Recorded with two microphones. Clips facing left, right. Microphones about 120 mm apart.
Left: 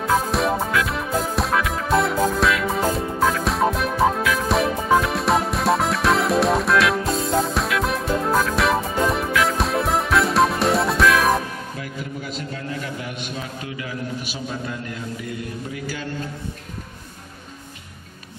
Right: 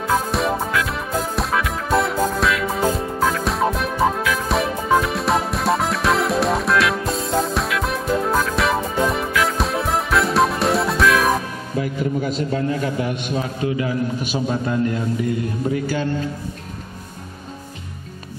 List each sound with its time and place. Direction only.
0.0 s music: centre (ahead or behind)
11.8 s a man's voice: 30° right (ahead or behind)